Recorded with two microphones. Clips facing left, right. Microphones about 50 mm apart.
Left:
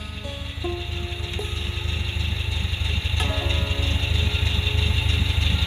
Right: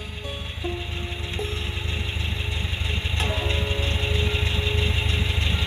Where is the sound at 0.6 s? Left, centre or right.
Centre.